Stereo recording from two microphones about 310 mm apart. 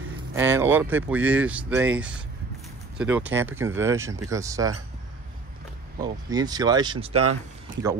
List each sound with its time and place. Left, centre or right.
0.3 s speech: centre
6.3 s speech: centre
7.2 s speech: right